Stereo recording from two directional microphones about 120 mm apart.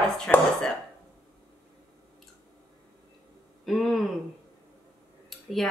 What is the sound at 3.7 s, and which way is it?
Speech, centre (ahead or behind).